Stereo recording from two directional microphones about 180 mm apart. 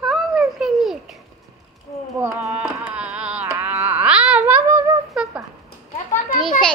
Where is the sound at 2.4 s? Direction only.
5° right (ahead or behind).